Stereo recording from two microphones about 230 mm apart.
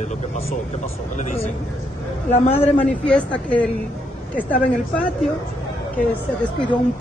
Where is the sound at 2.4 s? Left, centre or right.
Centre.